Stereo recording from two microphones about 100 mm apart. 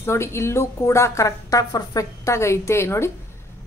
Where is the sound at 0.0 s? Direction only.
25° left (ahead or behind).